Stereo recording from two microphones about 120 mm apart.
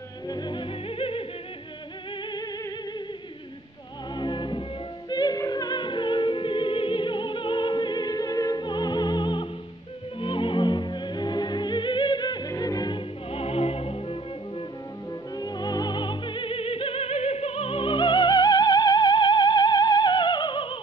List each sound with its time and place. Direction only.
0.3 s music: 40° left (ahead or behind)
2.3 s music: 35° left (ahead or behind)
4.1 s music: 40° left (ahead or behind)
13.3 s music: 55° left (ahead or behind)
15.3 s music: 35° left (ahead or behind)